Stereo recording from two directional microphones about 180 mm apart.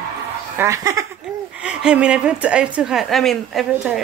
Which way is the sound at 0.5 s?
15° right (ahead or behind).